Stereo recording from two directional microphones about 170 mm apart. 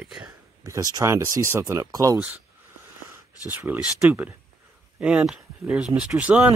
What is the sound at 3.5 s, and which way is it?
Speech, 10° right (ahead or behind).